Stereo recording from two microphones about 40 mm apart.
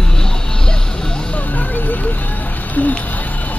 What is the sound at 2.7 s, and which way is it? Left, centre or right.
Speech, left.